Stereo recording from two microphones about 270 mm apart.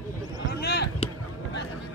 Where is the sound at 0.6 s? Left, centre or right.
Left.